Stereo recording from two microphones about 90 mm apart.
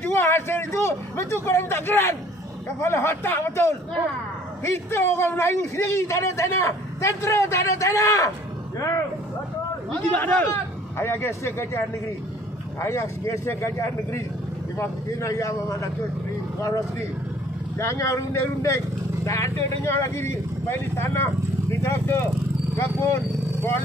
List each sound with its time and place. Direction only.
0.0 s a man's voice: 25° left (ahead or behind)
9.9 s a man's voice: 20° left (ahead or behind)
10.5 s speech: 30° left (ahead or behind)
12.8 s a man's voice: 30° left (ahead or behind)
17.7 s a man's voice: 35° left (ahead or behind)